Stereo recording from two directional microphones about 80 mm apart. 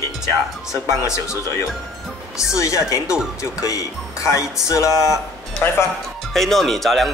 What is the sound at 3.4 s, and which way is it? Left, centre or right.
Speech, left.